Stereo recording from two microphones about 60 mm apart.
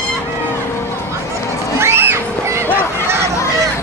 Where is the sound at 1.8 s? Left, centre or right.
Right.